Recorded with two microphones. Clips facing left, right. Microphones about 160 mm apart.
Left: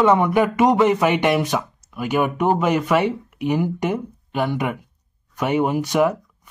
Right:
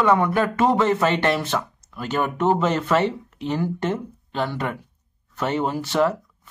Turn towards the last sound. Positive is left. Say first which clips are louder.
# left 2 dB
turn(degrees=15)  # may be behind; listen again after turning